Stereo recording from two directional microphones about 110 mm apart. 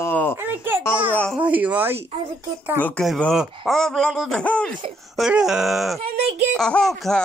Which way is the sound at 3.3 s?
Centre (ahead or behind).